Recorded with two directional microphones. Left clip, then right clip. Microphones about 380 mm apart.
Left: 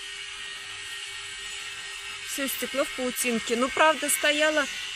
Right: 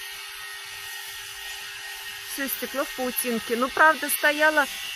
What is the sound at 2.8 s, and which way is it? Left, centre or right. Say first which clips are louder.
Speech: even; centre.